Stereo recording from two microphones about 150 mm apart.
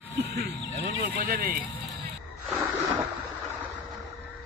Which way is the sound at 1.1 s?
75° right (ahead or behind).